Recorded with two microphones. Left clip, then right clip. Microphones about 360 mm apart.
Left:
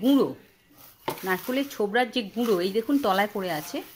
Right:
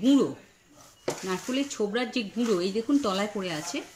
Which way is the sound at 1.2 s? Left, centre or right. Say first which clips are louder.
Left 5 dB; centre.